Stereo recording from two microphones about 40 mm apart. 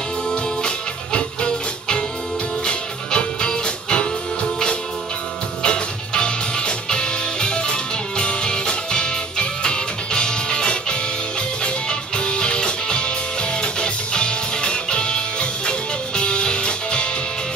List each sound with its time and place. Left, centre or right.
0.3 s music: left